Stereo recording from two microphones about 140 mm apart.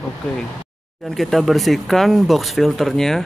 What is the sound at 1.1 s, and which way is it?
Speech, centre (ahead or behind).